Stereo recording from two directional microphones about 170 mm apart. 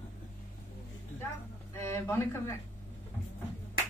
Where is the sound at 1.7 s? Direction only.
15° left (ahead or behind).